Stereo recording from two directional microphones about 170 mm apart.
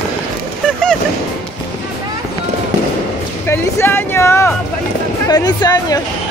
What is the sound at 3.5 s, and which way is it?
Music, 15° left (ahead or behind).